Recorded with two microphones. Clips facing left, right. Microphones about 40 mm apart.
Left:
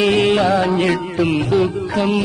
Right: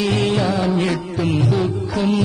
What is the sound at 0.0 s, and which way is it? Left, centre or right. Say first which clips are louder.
Music: left 4 dB; left.